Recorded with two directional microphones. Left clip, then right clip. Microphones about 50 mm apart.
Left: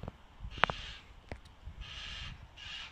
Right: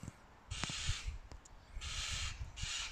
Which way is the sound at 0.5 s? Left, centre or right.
Right.